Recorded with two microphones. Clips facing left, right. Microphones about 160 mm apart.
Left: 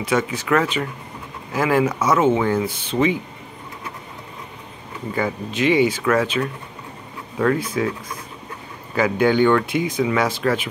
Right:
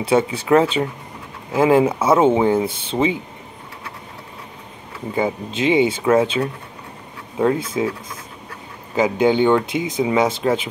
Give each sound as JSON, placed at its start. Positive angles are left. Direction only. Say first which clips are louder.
{"t": 0.0, "sound": "speech", "louder": "right 4 dB", "side_deg": -30}
{"t": 5.1, "sound": "speech", "louder": "right 2 dB", "side_deg": -20}
{"t": 8.9, "sound": "speech", "louder": "right 1 dB", "side_deg": -20}